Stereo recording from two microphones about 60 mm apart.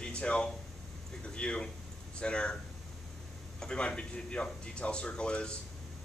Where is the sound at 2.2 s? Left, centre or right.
Centre.